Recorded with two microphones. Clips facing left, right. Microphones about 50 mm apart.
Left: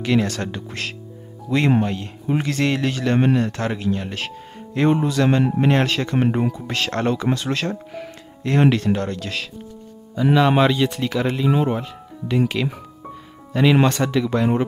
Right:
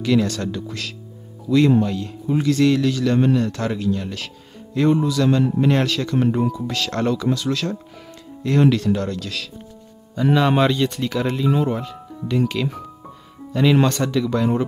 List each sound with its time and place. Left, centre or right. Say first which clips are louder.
0.0 s speech: right 1 dB; left
10.1 s speech: left 1 dB; centre
11.4 s speech: even; left